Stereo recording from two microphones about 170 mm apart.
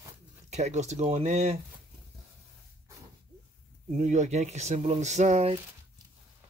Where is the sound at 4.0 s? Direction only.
45° right (ahead or behind).